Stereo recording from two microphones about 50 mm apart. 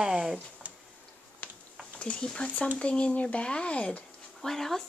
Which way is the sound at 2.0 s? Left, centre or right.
Centre.